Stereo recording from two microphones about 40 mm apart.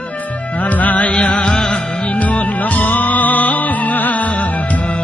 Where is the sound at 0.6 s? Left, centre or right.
Left.